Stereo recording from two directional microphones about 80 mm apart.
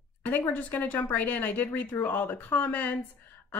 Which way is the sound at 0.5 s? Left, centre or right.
Left.